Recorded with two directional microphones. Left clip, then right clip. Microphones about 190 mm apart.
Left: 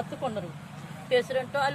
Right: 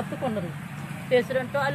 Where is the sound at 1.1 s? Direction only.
20° left (ahead or behind).